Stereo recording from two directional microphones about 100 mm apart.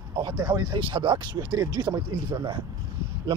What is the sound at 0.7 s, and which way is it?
Speech, 55° right (ahead or behind).